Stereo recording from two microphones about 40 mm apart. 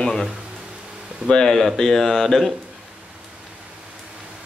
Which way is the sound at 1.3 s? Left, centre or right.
Centre.